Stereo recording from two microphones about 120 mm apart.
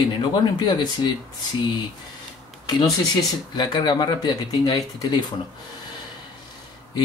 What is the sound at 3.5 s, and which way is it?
Speech, 35° left (ahead or behind).